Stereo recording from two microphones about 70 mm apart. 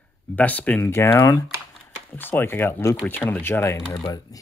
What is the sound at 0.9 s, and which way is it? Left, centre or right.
Speech, left.